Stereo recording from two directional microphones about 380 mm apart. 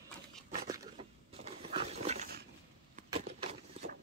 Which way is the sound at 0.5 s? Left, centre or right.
Centre.